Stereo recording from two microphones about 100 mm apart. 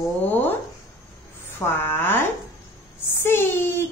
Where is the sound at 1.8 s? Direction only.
20° left (ahead or behind).